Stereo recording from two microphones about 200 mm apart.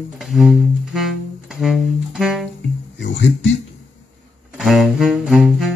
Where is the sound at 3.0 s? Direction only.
65° left (ahead or behind).